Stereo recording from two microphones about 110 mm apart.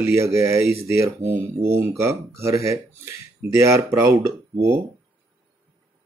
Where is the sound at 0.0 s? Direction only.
25° right (ahead or behind).